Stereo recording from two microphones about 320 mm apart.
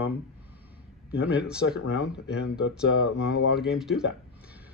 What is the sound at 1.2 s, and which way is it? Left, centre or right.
Speech, centre.